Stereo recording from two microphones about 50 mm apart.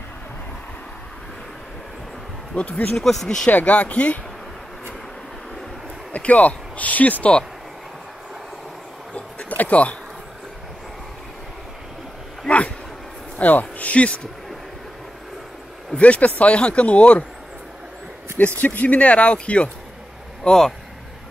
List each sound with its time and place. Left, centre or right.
2.5 s speech: left
2.9 s speech: centre
3.4 s speech: left
6.1 s speech: left
9.1 s a sound: left
12.4 s a sound: left
13.4 s speech: left
16.0 s speech: left
18.6 s speech: left
20.4 s speech: centre